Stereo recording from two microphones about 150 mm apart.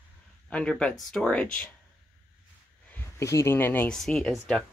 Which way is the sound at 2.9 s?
20° left (ahead or behind).